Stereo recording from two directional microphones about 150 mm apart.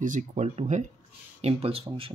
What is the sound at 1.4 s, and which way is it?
Speech, 40° right (ahead or behind).